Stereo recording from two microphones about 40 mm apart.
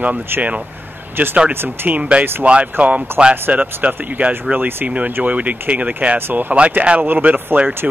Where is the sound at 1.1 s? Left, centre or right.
Right.